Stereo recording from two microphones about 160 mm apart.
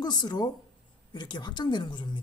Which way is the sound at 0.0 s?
25° left (ahead or behind).